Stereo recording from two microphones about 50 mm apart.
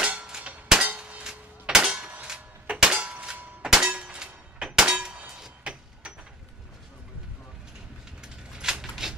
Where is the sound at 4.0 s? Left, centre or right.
Centre.